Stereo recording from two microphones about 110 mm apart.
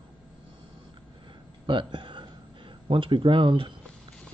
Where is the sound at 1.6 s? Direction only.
50° right (ahead or behind).